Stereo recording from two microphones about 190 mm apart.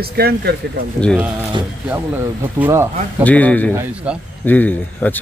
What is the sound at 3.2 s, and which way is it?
Speech, 10° left (ahead or behind).